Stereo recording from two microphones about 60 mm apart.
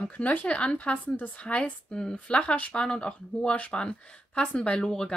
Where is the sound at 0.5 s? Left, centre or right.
Centre.